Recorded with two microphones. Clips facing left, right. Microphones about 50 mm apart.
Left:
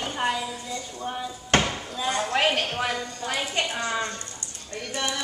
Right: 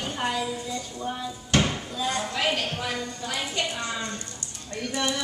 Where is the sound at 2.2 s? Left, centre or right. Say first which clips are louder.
Left 3 dB; left.